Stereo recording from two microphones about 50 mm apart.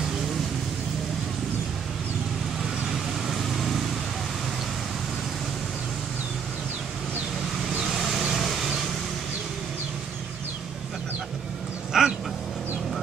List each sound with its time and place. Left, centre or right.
2.6 s vehicle: centre
7.9 s vehicle: centre
11.9 s dog: centre